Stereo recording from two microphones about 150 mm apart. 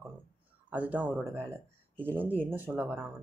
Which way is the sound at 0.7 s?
10° right (ahead or behind).